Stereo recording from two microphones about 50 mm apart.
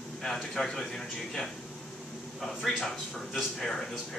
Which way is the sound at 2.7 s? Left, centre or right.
Centre.